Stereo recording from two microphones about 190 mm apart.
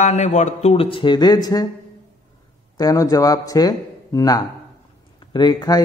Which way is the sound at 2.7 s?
20° left (ahead or behind).